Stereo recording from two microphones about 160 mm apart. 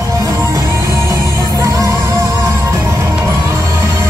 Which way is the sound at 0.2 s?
20° right (ahead or behind).